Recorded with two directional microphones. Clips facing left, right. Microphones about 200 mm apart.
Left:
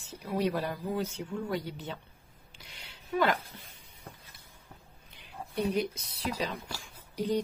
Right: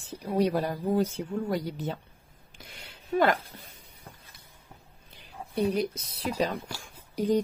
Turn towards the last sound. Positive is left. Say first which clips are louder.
# right 5 dB
turn(degrees=-45)  # may be behind; listen again after turning